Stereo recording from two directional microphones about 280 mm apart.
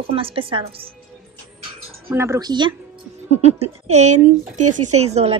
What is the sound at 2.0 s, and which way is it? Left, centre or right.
A woman's voice, centre.